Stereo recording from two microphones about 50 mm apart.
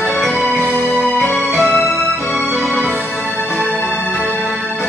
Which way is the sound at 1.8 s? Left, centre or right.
Centre.